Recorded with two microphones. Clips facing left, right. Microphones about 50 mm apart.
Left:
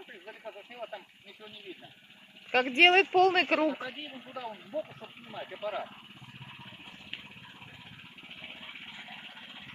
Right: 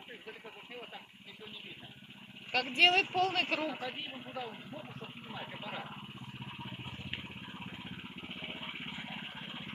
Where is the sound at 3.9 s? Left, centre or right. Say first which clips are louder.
Even; centre.